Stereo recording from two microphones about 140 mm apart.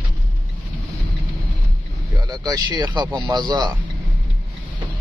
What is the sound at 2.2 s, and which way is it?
Speech, 25° right (ahead or behind).